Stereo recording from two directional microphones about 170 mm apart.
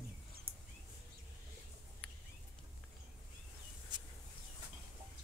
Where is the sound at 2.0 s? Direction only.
10° left (ahead or behind).